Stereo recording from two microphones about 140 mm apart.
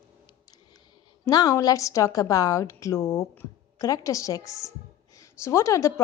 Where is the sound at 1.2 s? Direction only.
30° left (ahead or behind).